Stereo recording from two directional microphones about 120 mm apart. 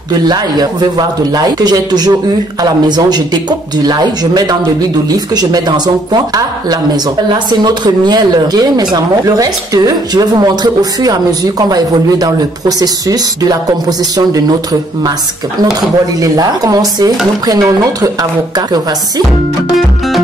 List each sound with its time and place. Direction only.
0.1 s speech: 35° right (ahead or behind)
7.6 s speech: 35° right (ahead or behind)
16.2 s speech: 30° right (ahead or behind)